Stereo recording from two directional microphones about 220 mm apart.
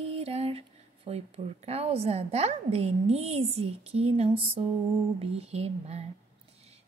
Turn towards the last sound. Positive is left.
turn(degrees=-30)  # may be behind; listen again after turning